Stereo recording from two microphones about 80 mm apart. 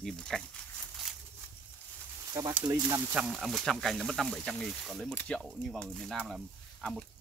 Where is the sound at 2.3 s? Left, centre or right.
Right.